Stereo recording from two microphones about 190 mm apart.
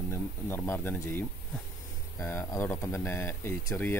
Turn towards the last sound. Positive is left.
turn(degrees=15)  # may be behind; listen again after turning